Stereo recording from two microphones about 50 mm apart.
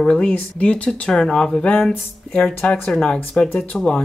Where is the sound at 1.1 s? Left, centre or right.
Centre.